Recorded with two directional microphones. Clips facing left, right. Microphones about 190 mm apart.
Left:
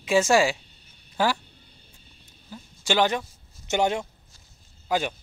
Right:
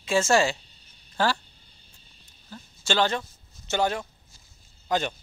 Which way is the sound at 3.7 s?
20° left (ahead or behind).